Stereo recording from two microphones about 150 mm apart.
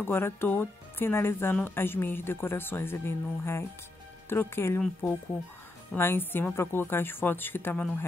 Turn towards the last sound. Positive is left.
turn(degrees=10)  # may be behind; listen again after turning